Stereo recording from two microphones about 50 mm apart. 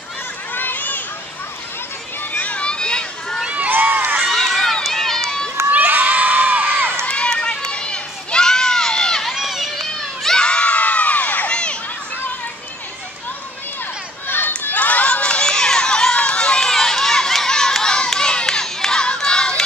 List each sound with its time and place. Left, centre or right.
0.6 s a sound: left
2.3 s a sound: left
3.4 s run: right
3.7 s run: right
4.3 s run: centre
5.7 s crowd: right
7.1 s run: left
9.3 s run: centre
10.2 s crowd: centre; by 11.5 s left
14.2 s run: left
14.6 s crowd: left; by 19.6 s centre